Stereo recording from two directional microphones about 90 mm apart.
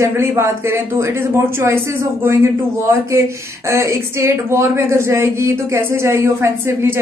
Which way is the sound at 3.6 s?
30° right (ahead or behind).